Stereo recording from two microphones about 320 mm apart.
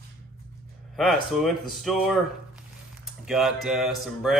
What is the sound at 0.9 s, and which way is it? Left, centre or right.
Speech, centre.